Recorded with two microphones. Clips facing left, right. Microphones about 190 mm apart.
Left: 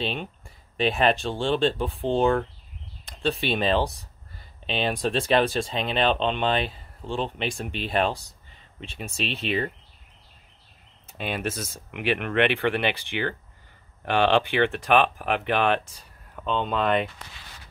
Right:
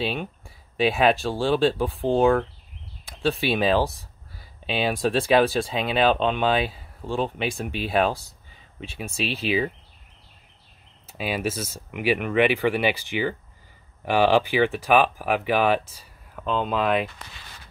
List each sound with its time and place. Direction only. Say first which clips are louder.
0.0 s speech: right 2 dB; 5° right (ahead or behind)
11.1 s speech: right 3 dB; 5° right (ahead or behind)